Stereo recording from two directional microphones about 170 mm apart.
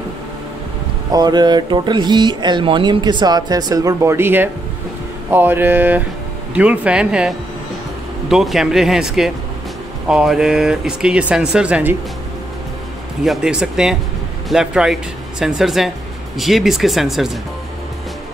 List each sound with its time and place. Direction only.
1.1 s speech: 25° right (ahead or behind); by 12.0 s 10° right (ahead or behind)
13.2 s speech: 5° right (ahead or behind)